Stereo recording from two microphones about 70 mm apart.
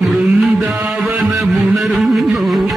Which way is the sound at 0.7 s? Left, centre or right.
Centre.